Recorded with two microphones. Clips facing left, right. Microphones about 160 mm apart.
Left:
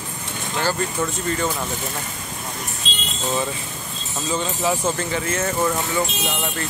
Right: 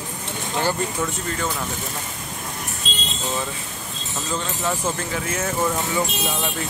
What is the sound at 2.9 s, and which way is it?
Vehicle, 45° right (ahead or behind).